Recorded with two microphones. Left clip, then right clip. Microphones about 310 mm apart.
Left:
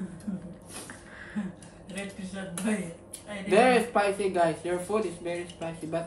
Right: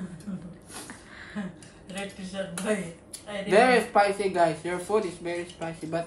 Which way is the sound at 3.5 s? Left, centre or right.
Centre.